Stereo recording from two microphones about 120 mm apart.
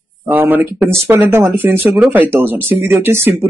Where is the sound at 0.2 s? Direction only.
15° right (ahead or behind).